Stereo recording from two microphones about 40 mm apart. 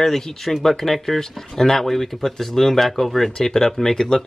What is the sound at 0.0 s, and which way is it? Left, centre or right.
Speech, centre.